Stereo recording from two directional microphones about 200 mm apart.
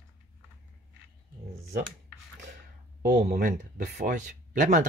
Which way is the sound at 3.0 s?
40° right (ahead or behind).